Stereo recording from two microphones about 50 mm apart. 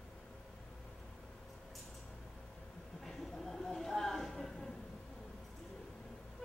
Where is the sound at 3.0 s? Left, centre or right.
Centre.